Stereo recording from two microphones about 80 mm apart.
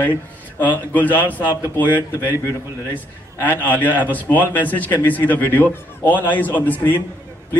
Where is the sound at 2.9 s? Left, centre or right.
Left.